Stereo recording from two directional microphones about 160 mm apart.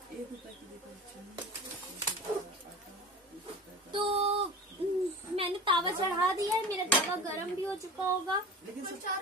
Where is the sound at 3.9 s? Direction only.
40° right (ahead or behind).